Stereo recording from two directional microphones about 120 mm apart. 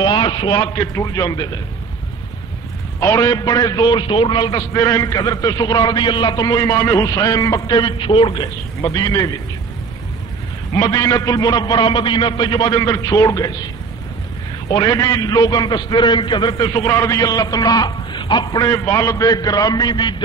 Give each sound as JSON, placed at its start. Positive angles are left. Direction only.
{"t": 0.0, "sound": "a man's voice", "side_deg": 40}
{"t": 3.0, "sound": "a man's voice", "side_deg": 30}
{"t": 8.8, "sound": "a man's voice", "side_deg": 30}
{"t": 10.7, "sound": "a man's voice", "side_deg": 30}
{"t": 14.7, "sound": "a man's voice", "side_deg": 30}